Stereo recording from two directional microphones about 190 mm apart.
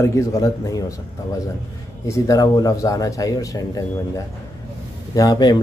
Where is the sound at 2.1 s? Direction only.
20° left (ahead or behind).